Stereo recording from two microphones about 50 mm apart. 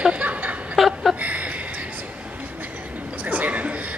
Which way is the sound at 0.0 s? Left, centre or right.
Right.